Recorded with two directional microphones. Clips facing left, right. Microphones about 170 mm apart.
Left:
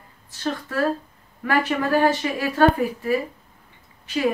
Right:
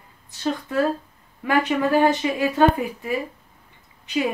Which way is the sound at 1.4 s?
20° right (ahead or behind).